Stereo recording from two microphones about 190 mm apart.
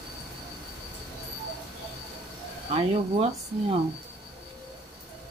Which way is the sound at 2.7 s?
30° right (ahead or behind).